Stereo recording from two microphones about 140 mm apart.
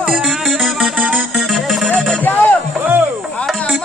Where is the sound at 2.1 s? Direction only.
10° left (ahead or behind).